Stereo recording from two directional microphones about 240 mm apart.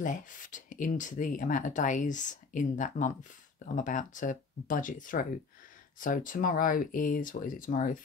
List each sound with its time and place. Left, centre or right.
0.0 s speech: left